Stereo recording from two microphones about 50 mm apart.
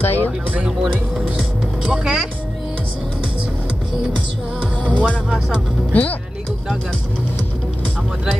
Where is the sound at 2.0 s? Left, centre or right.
Centre.